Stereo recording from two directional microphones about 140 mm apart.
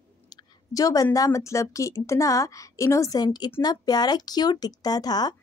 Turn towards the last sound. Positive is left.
turn(degrees=30)  # may be behind; listen again after turning